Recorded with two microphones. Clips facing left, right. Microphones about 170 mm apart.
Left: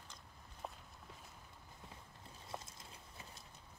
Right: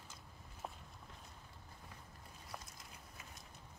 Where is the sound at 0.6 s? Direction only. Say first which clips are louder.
Even; centre (ahead or behind).